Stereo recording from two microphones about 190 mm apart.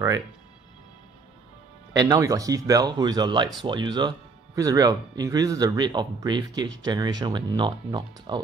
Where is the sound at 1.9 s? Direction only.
20° right (ahead or behind).